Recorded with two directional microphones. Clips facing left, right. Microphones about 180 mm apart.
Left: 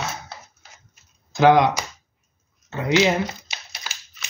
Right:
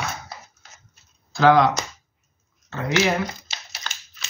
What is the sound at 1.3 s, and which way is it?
Speech, 20° left (ahead or behind).